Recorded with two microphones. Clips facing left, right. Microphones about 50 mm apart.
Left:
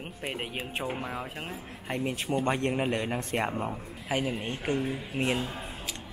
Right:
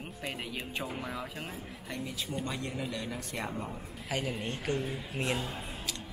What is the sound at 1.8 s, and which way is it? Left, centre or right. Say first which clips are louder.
Speech: left 8 dB; left.